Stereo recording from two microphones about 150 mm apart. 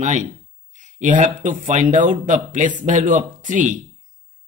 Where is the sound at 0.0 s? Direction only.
55° right (ahead or behind).